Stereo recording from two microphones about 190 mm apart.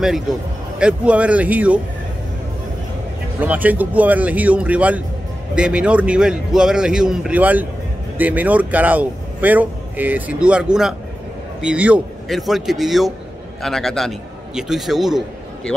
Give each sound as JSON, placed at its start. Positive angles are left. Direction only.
{"t": 0.7, "sound": "a man's voice", "side_deg": -5}
{"t": 3.3, "sound": "a man's voice", "side_deg": -10}